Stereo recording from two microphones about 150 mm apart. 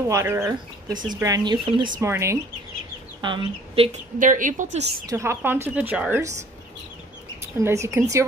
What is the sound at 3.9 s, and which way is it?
A woman's voice, 60° right (ahead or behind).